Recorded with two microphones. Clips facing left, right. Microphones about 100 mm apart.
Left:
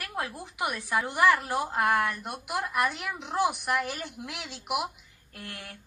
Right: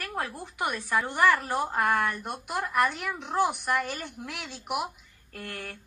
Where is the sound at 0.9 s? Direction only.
15° left (ahead or behind).